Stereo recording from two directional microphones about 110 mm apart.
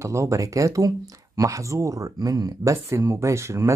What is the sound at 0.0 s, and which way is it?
Speech, 25° right (ahead or behind).